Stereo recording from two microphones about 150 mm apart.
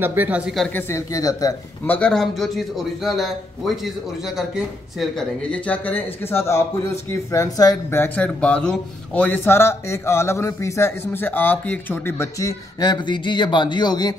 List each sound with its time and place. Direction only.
0.0 s speech: 15° right (ahead or behind)
0.7 s speech: 15° left (ahead or behind)
1.9 s a man's voice: 5° left (ahead or behind)
5.5 s speech: 10° left (ahead or behind); by 14.1 s 30° left (ahead or behind)